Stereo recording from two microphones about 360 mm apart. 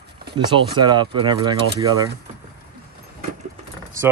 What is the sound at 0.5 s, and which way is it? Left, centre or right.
Speech, centre.